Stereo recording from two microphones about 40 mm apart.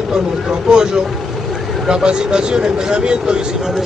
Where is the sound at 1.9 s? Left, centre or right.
Right.